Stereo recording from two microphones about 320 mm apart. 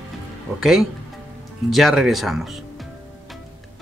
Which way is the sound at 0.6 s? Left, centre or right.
Centre.